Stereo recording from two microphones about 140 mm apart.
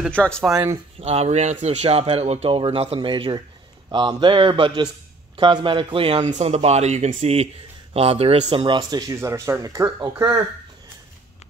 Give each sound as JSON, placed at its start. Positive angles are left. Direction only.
{"t": 0.1, "sound": "speech", "side_deg": 5}
{"t": 0.9, "sound": "a man's voice", "side_deg": -50}
{"t": 6.2, "sound": "speech", "side_deg": -50}